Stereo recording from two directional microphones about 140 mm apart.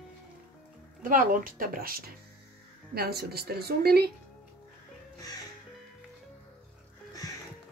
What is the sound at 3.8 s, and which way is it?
Speech, 90° right.